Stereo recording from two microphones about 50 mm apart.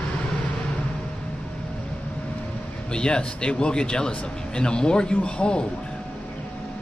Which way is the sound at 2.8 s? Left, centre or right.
Centre.